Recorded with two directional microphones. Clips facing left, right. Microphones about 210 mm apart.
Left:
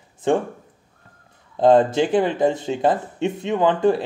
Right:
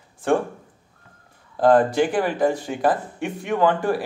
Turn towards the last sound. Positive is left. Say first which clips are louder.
# left 2 dB
turn(degrees=20)  # may be behind; listen again after turning